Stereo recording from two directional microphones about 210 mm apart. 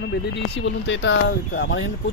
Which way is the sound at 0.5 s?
60° left (ahead or behind).